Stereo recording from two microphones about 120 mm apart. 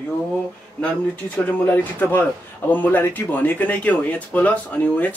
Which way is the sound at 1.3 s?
20° left (ahead or behind).